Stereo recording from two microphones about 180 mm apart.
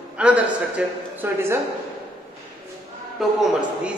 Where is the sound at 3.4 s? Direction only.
5° right (ahead or behind).